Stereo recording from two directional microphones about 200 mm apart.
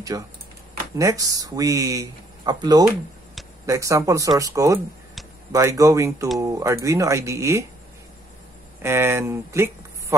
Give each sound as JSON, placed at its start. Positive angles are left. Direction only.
{"t": 0.1, "sound": "speech", "side_deg": -20}
{"t": 8.8, "sound": "speech", "side_deg": -15}